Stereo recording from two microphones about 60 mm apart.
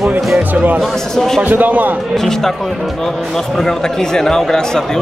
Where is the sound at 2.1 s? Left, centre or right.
Centre.